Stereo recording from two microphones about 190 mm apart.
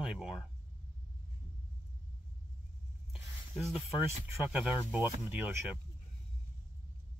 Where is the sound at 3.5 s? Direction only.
Centre (ahead or behind).